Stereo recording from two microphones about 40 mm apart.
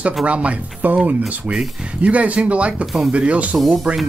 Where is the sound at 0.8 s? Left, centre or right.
Right.